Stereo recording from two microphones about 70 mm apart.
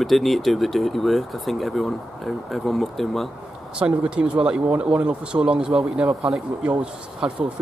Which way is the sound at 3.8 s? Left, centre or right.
Centre.